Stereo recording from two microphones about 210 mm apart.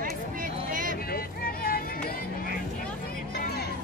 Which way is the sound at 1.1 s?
45° left (ahead or behind).